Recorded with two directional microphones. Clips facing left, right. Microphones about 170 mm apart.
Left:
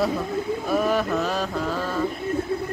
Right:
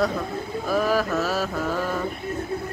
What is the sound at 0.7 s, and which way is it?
Speech, centre (ahead or behind).